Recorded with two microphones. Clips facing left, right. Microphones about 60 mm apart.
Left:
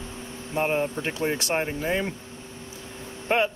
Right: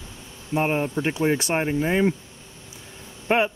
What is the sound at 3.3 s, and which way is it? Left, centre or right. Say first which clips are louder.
Speech: right 2 dB; centre.